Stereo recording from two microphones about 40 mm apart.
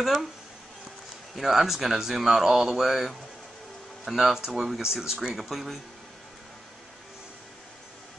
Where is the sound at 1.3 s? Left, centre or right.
Centre.